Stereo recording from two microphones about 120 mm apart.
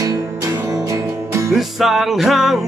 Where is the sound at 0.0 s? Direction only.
25° right (ahead or behind).